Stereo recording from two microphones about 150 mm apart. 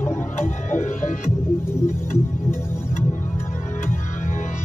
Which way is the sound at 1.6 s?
15° left (ahead or behind).